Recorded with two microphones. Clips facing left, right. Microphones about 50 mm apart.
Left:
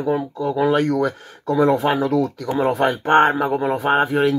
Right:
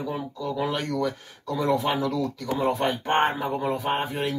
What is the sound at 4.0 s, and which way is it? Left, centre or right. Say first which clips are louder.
Speech: left 10 dB; left.